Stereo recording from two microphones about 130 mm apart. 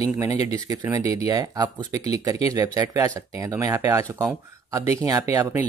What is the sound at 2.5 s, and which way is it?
Speech, 25° right (ahead or behind).